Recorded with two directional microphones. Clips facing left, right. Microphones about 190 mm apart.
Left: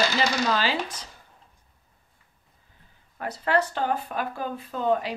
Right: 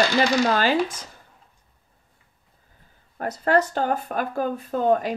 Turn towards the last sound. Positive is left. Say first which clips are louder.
# right 4 dB
turn(degrees=-45)  # may be behind; listen again after turning